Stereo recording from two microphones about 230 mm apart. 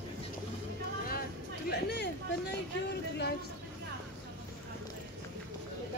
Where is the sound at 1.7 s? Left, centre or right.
Left.